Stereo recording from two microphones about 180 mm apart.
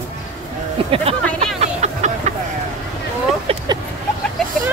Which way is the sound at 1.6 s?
40° right (ahead or behind).